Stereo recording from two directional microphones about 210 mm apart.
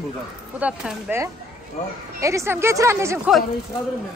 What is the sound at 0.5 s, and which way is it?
A woman's voice, 5° right (ahead or behind).